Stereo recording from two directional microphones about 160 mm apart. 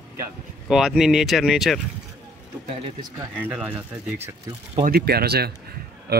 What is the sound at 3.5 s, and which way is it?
Speech, 10° right (ahead or behind).